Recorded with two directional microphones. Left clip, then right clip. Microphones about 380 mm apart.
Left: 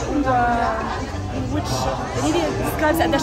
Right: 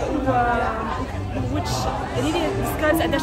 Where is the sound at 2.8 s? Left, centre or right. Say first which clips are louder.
Left 2 dB; centre.